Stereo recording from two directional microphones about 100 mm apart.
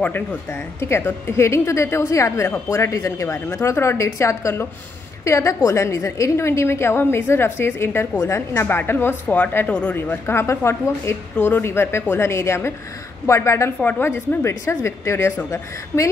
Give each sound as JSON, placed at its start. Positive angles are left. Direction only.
{"t": 0.0, "sound": "speech", "side_deg": 15}
{"t": 0.5, "sound": "a woman's voice", "side_deg": 25}